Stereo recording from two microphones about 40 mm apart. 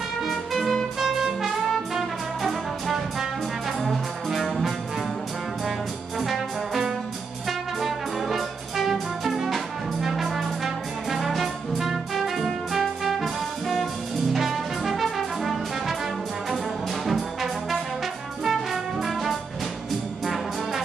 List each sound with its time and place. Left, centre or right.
0.2 s music: centre
0.9 s music: centre
1.7 s brass instrument: centre
7.4 s music: centre
17.0 s brass instrument: centre